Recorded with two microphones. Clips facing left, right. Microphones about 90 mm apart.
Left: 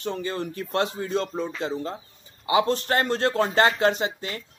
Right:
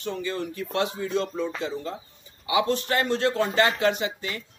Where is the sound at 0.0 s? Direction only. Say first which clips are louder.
Left 1 dB; 35° left (ahead or behind).